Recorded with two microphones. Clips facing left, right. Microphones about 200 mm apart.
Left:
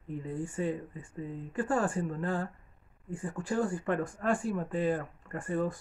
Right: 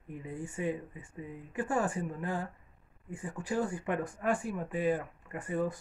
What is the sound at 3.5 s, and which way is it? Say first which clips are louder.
Speech: left 2 dB; 15° right (ahead or behind).